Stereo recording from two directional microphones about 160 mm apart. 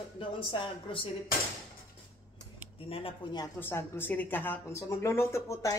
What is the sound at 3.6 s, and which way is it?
A woman's voice, 15° left (ahead or behind).